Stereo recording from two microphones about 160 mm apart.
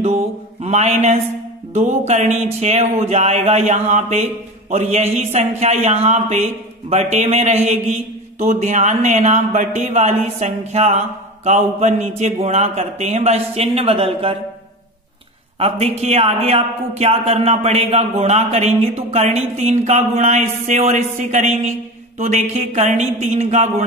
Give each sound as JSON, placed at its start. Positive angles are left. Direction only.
{"t": 0.0, "sound": "mantra", "side_deg": -40}
{"t": 1.7, "sound": "speech", "side_deg": -45}
{"t": 15.6, "sound": "speech", "side_deg": -40}